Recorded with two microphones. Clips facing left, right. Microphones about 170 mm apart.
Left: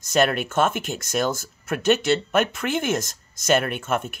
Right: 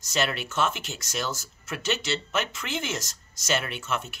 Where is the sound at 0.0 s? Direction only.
55° left (ahead or behind).